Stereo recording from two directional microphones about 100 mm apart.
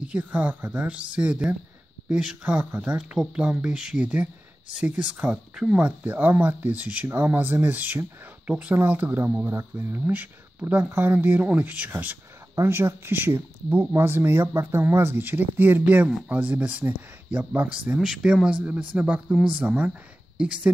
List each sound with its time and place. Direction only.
0.0 s speech: 15° right (ahead or behind)
17.9 s speech: 5° right (ahead or behind)